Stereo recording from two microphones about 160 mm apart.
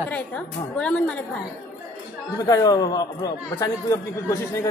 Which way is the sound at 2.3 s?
25° left (ahead or behind).